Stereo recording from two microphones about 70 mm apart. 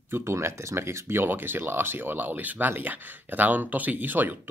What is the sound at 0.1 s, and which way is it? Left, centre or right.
Speech, right.